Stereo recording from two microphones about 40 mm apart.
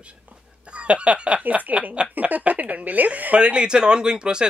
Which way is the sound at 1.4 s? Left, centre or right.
Right.